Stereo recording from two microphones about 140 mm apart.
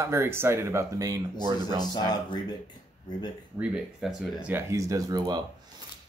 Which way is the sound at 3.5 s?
10° right (ahead or behind).